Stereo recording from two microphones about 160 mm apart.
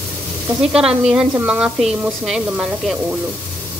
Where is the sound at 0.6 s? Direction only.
5° right (ahead or behind).